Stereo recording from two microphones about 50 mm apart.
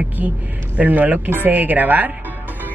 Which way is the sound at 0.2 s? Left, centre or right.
Right.